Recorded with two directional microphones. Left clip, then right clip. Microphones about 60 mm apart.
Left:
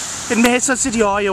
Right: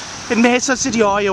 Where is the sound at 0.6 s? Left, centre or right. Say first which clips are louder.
Right 1 dB; right.